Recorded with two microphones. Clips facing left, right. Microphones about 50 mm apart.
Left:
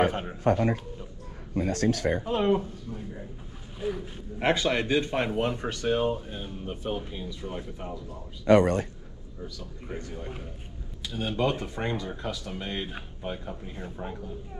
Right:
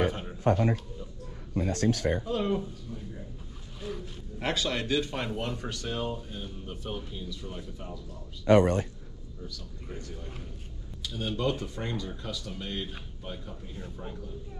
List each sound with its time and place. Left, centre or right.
0.0 s a sound: left
1.5 s speech: left
8.5 s speech: left
9.8 s speech: left